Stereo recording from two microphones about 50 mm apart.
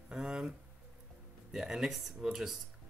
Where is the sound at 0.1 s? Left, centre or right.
Centre.